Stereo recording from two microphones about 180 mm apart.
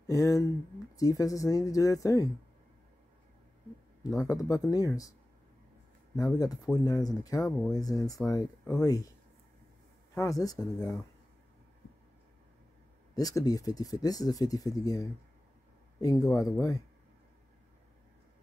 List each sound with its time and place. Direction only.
0.0 s speech: 20° left (ahead or behind)
4.2 s speech: 20° left (ahead or behind)
6.1 s speech: 20° left (ahead or behind)
10.1 s speech: 20° left (ahead or behind)
13.1 s speech: 20° left (ahead or behind)